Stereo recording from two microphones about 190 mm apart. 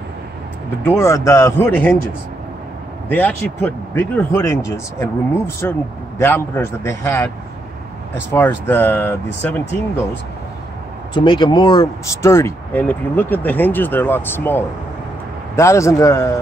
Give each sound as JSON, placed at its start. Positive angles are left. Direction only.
{"t": 0.8, "sound": "speech", "side_deg": 15}
{"t": 3.1, "sound": "speech", "side_deg": 10}
{"t": 8.3, "sound": "speech", "side_deg": 10}
{"t": 11.1, "sound": "speech", "side_deg": 25}